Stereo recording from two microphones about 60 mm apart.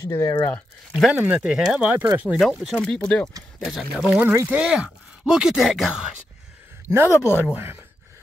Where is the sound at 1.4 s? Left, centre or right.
Centre.